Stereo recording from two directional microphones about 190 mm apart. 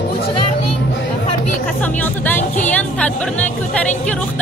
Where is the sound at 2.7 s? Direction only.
5° left (ahead or behind).